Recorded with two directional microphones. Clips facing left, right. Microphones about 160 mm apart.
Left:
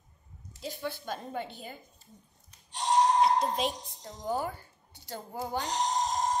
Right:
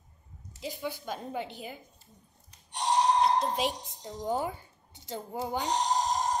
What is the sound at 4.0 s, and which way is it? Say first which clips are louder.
A woman's voice: right 2 dB; 15° right (ahead or behind).